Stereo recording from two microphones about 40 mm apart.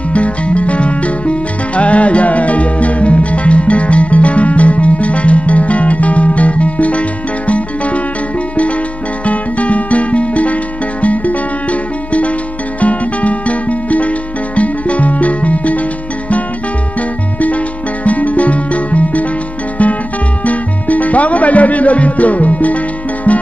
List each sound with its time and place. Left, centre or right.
0.1 s music: left
9.2 s music: left
17.4 s music: left